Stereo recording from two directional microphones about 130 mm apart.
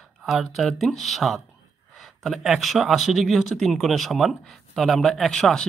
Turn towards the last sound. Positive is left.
turn(degrees=5)  # may be behind; listen again after turning